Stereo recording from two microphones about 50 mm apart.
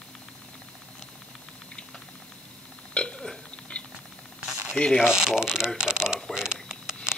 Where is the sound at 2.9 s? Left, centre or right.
Centre.